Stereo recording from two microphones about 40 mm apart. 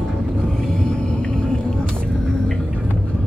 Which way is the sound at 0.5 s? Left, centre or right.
Centre.